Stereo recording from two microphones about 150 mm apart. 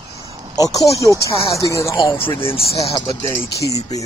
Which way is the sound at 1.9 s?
35° left (ahead or behind).